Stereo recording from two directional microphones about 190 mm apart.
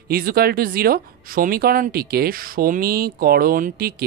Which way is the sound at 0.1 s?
50° right (ahead or behind).